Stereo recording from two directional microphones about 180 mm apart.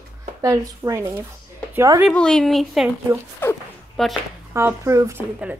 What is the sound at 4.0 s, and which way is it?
Speech, centre (ahead or behind).